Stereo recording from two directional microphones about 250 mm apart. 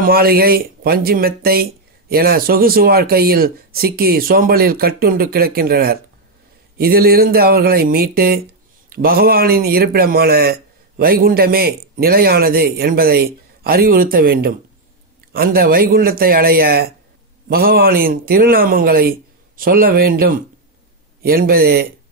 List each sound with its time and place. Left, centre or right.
0.0 s speech: right